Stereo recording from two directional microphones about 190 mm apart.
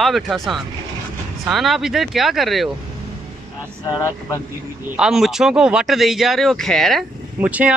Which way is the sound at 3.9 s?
15° left (ahead or behind).